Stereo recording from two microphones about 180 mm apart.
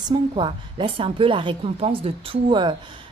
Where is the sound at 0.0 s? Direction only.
25° right (ahead or behind).